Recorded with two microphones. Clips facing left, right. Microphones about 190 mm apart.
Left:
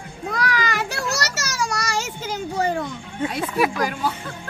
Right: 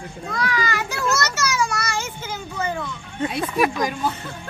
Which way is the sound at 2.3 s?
40° left (ahead or behind).